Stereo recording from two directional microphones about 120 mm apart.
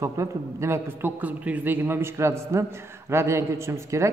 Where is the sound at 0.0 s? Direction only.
25° right (ahead or behind).